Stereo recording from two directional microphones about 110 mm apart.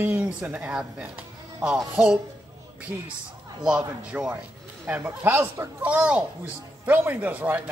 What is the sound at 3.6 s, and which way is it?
A man's voice, 10° right (ahead or behind).